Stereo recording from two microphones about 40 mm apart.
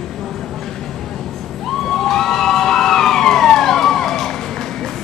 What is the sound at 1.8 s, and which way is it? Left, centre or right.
Emergency vehicle, centre.